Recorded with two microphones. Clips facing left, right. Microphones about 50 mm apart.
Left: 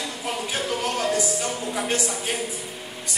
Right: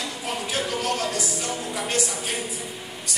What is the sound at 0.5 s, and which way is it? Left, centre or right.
Speech, left.